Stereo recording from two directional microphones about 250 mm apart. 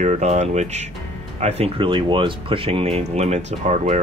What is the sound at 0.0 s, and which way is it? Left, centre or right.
Speech, right.